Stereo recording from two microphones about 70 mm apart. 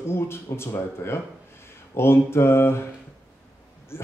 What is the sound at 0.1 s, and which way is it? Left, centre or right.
A man's voice, left.